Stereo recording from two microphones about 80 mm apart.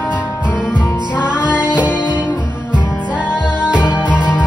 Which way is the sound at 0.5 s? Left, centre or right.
Centre.